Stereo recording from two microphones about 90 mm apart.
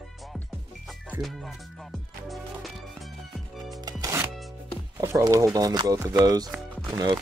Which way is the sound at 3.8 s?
40° right (ahead or behind).